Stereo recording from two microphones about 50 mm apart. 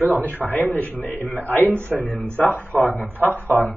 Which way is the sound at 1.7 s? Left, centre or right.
Right.